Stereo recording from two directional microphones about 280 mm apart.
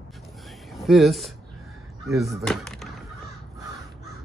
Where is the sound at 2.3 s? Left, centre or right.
Centre.